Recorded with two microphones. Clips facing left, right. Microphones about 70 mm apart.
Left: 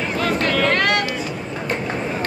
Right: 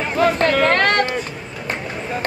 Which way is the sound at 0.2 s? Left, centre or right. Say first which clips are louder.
Right 5 dB; right.